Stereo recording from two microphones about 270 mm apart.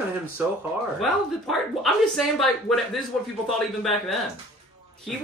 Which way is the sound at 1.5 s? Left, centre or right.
Centre.